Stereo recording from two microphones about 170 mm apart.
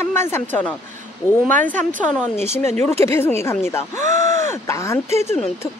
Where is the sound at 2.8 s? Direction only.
15° left (ahead or behind).